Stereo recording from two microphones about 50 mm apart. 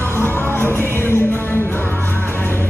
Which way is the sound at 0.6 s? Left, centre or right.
Right.